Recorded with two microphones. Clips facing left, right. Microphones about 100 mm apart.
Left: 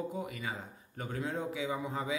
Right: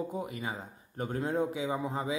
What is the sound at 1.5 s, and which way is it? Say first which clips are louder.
Speech: right 3 dB; 30° right (ahead or behind).